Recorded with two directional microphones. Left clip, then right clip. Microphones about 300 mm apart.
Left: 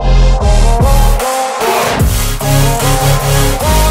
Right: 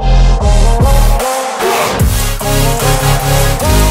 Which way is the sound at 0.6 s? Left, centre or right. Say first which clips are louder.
Left 1 dB; centre.